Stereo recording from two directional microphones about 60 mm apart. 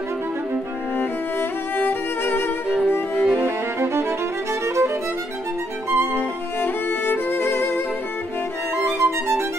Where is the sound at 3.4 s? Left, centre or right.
Right.